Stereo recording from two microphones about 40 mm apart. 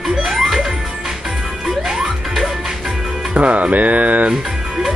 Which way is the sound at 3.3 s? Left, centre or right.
Right.